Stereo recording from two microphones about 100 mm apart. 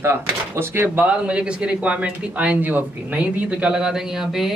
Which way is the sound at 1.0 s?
10° right (ahead or behind).